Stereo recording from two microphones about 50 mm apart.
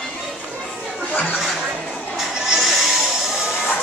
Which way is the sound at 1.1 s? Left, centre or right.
Left.